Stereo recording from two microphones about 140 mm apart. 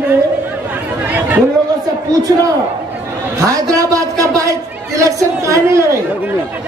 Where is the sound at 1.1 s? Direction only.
10° right (ahead or behind).